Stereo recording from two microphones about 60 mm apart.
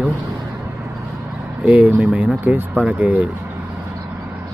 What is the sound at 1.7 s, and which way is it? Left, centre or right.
Speech, right.